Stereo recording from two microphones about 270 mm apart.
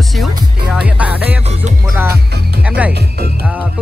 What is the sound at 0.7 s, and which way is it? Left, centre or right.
Speech, centre.